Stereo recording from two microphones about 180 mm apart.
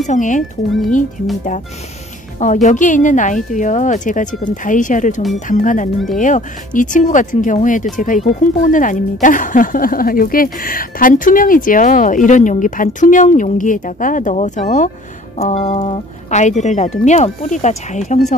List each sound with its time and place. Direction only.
0.0 s a woman's voice: 45° left (ahead or behind)
0.7 s speech: centre (ahead or behind)
2.4 s a woman's voice: 45° left (ahead or behind)